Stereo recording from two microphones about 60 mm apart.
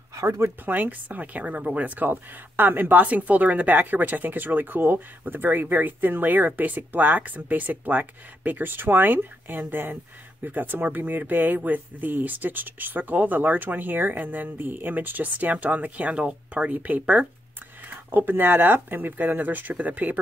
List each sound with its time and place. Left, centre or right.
0.7 s a woman's voice: right